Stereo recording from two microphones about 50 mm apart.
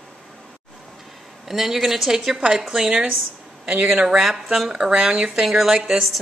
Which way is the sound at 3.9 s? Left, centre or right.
Centre.